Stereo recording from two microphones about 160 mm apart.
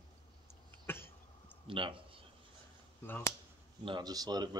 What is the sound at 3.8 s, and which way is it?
Speech, 30° right (ahead or behind).